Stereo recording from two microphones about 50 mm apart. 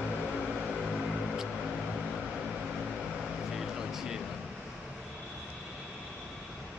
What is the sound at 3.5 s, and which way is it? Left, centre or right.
Vehicle, centre.